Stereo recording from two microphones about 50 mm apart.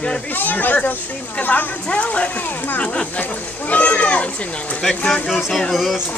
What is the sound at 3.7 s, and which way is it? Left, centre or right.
Speech, left.